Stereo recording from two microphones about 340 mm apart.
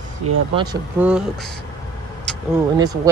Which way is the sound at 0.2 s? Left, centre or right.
Right.